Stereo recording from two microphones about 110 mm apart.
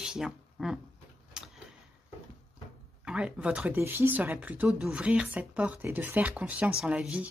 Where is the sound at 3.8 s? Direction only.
20° right (ahead or behind).